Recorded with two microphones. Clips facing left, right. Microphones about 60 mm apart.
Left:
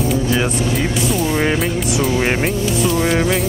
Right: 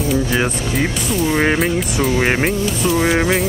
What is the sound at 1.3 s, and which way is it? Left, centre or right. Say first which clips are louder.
Music: right 4 dB; centre.